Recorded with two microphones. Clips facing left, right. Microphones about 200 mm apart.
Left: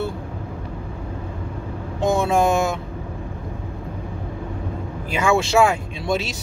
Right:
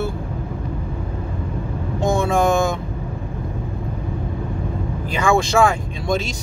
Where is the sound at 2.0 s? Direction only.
5° left (ahead or behind).